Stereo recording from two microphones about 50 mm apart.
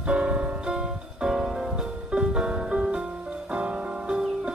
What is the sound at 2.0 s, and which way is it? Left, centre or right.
Music, centre.